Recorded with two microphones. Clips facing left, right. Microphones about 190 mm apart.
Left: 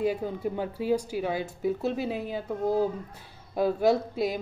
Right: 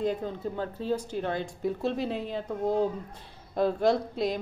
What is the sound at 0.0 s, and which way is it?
A man's voice, 10° left (ahead or behind).